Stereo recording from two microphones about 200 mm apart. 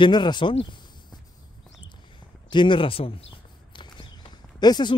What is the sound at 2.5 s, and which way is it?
Speech, 25° left (ahead or behind).